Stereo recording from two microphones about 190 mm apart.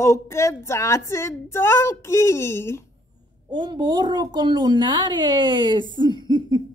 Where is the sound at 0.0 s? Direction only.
15° left (ahead or behind).